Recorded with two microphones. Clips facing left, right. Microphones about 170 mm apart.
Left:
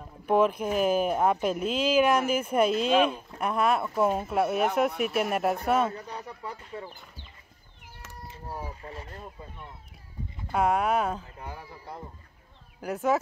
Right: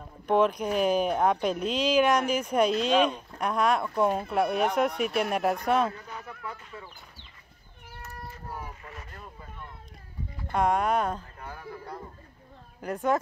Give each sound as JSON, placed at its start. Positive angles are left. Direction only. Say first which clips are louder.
{"t": 0.3, "sound": "speech", "louder": "even", "side_deg": 5}
{"t": 5.9, "sound": "a sound", "louder": "left 3 dB", "side_deg": 35}
{"t": 8.5, "sound": "boat", "louder": "left 3 dB", "side_deg": 30}
{"t": 10.5, "sound": "speech", "louder": "even", "side_deg": 5}
{"t": 11.3, "sound": "speech", "louder": "right 1 dB", "side_deg": 15}
{"t": 12.8, "sound": "speech", "louder": "left 1 dB", "side_deg": 5}